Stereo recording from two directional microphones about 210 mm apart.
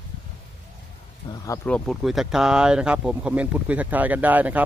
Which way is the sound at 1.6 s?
5° left (ahead or behind).